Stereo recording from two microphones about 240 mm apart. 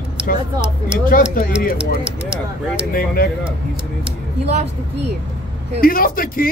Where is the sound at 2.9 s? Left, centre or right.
Left.